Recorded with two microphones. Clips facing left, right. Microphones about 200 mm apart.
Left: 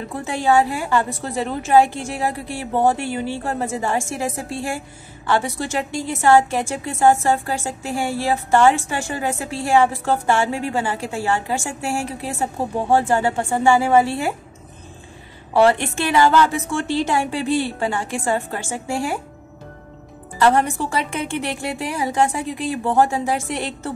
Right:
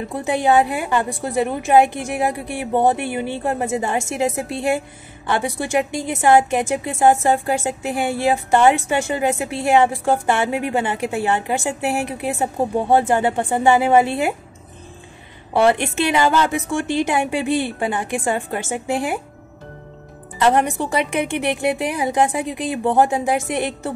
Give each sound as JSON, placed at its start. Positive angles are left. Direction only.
{"t": 0.1, "sound": "a woman's voice", "side_deg": -15}
{"t": 15.6, "sound": "a woman's voice", "side_deg": -15}
{"t": 20.3, "sound": "a woman's voice", "side_deg": -20}